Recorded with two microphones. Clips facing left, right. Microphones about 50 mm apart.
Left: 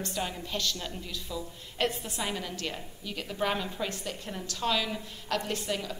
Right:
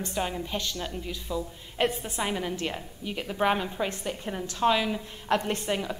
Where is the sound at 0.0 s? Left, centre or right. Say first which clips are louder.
Right 4 dB; centre.